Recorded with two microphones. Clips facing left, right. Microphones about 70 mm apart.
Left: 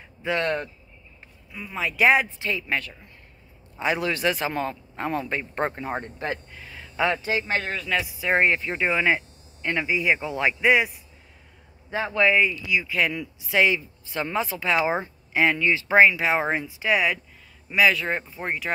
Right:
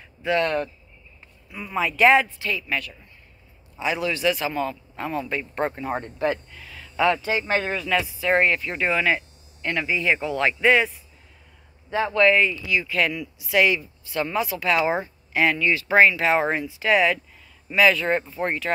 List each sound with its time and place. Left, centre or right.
0.2 s speech: left
1.5 s speech: centre
2.0 s speech: left
3.7 s a man's voice: left
5.9 s speech: centre
6.6 s a sound: left
7.2 s speech: centre
8.1 s speech: centre
11.9 s speech: centre
13.2 s speech: left
16.0 s speech: centre